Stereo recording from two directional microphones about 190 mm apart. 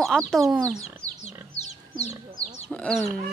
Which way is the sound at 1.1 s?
35° left (ahead or behind).